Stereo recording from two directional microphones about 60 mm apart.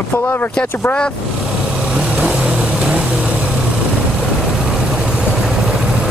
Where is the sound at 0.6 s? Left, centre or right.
Centre.